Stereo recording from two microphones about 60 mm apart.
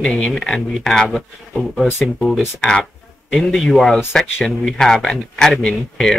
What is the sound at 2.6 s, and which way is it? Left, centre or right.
Speech, centre.